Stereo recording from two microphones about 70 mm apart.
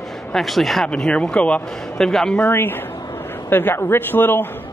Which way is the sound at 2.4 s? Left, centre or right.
Left.